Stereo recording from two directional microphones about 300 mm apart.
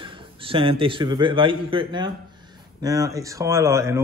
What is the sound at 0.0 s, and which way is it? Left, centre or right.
A man's voice, centre.